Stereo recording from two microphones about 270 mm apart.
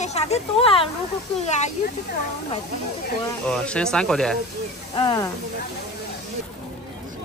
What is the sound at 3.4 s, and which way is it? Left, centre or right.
Speech, centre.